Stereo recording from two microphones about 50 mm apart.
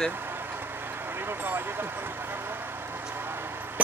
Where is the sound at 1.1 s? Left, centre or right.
Right.